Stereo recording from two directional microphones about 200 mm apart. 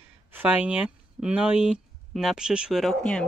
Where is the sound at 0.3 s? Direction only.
10° right (ahead or behind).